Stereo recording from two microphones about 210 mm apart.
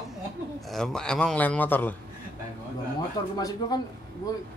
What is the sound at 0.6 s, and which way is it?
Speech, centre (ahead or behind).